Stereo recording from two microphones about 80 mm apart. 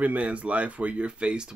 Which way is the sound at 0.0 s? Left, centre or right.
Centre.